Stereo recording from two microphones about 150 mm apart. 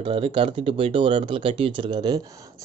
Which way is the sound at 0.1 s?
35° right (ahead or behind).